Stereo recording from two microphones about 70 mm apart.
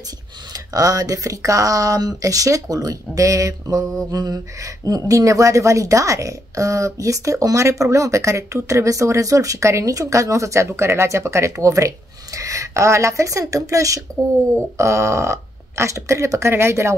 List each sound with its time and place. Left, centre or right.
0.5 s a woman's voice: right